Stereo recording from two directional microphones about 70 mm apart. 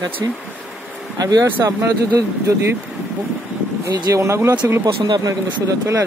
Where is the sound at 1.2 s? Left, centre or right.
Right.